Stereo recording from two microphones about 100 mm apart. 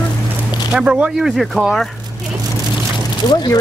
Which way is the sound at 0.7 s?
10° right (ahead or behind).